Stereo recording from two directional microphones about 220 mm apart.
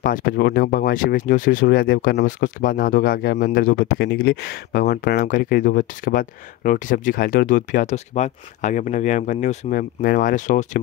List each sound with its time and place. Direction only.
0.0 s speech: 40° left (ahead or behind)